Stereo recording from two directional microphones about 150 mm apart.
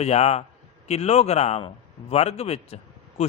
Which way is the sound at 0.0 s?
45° left (ahead or behind).